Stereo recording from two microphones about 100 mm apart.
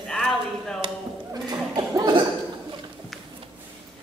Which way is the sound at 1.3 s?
50° right (ahead or behind).